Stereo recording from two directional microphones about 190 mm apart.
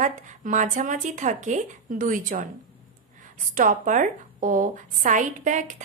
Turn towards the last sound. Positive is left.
turn(degrees=-40)  # may be behind; listen again after turning